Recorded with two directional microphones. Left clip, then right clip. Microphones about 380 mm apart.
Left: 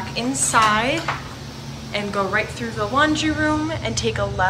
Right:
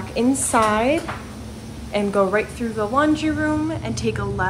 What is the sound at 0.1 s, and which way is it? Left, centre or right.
A woman's voice, centre.